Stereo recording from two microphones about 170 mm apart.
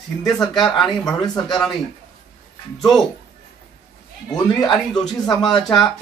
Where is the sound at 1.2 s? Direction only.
25° left (ahead or behind).